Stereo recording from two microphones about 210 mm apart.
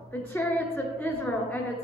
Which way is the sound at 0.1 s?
10° left (ahead or behind).